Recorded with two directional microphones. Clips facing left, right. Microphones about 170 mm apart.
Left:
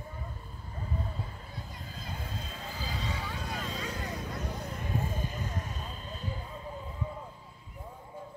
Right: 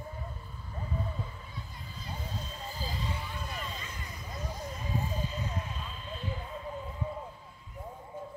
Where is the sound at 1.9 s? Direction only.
55° left (ahead or behind).